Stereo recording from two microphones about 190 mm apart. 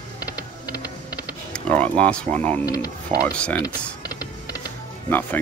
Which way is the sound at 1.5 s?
5° left (ahead or behind).